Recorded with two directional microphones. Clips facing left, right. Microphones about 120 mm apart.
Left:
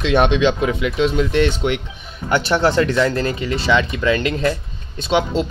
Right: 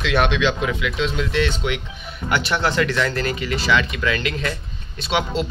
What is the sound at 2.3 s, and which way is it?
Speech, 30° left (ahead or behind).